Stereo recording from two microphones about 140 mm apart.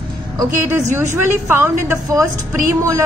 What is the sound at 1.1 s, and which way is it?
A woman's voice, 15° right (ahead or behind).